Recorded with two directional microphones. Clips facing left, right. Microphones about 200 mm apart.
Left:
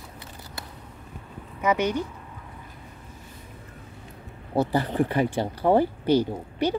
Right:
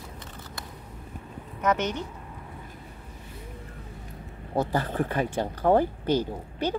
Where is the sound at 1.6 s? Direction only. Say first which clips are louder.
Left 3 dB; 10° left (ahead or behind).